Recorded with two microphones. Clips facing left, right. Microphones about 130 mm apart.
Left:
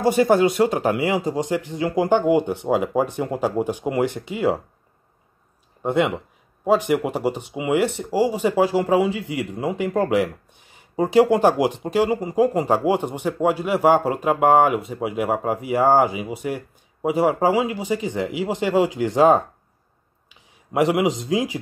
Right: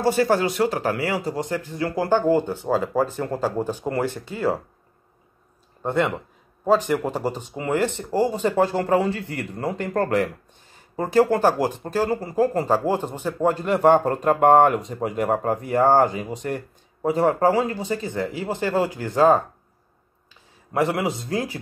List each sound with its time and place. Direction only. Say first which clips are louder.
0.0 s speech: left 3 dB; 20° left (ahead or behind)
5.8 s speech: left 2 dB; 10° left (ahead or behind)